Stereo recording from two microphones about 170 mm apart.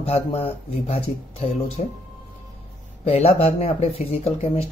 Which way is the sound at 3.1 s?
35° left (ahead or behind).